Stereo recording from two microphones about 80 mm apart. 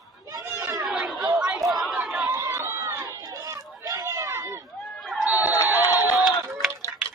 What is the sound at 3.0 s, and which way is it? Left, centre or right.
Run, right.